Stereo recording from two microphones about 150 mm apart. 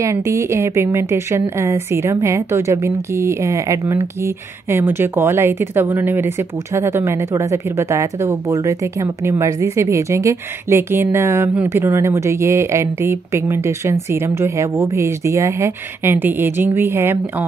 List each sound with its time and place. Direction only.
0.0 s speech: 20° right (ahead or behind)